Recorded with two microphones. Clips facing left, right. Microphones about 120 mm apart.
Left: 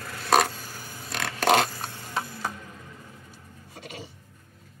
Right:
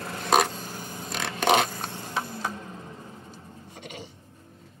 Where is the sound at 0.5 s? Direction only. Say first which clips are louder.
Right 4 dB; 50° right (ahead or behind).